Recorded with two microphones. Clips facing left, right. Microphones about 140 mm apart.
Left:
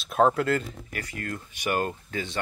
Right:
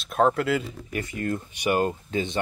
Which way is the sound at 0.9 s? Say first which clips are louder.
Right 7 dB; 20° right (ahead or behind).